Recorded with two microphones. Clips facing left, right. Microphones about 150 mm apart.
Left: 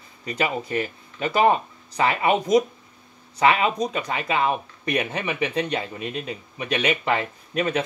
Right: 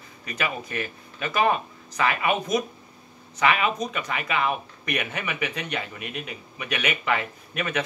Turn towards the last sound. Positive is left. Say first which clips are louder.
# left 4 dB
turn(degrees=30)  # may be behind; listen again after turning